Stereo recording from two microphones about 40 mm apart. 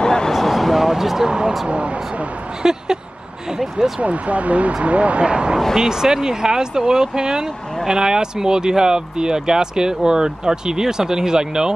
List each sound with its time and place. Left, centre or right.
0.0 s a sound: centre
0.3 s a sound: centre
0.8 s speech: centre
1.7 s speech: right
2.6 s speech: centre
4.0 s speech: right
5.8 s speech: centre